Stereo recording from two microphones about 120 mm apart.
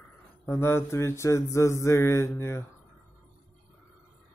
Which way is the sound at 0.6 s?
20° left (ahead or behind).